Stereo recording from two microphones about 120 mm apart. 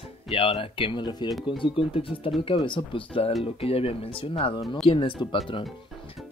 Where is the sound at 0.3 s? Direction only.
50° left (ahead or behind).